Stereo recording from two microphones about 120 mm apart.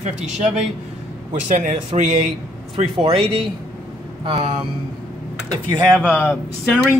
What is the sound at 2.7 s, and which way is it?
A man's voice, 55° right (ahead or behind).